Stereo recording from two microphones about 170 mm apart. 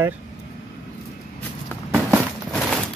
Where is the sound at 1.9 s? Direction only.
5° right (ahead or behind).